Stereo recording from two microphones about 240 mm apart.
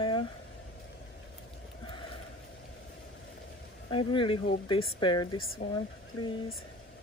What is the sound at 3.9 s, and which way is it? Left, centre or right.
Speech, left.